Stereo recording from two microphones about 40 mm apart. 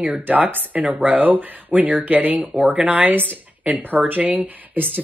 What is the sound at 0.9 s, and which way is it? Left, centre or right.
Speech, right.